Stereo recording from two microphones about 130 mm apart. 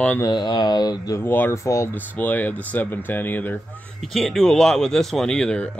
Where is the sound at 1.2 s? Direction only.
15° left (ahead or behind).